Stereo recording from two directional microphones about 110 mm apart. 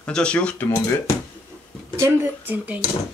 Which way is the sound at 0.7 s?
30° left (ahead or behind).